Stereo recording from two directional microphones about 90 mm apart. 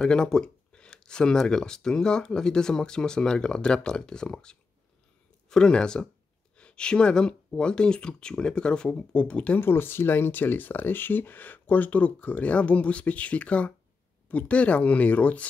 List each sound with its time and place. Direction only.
0.0 s speech: 10° left (ahead or behind)
9.6 s speech: 25° left (ahead or behind)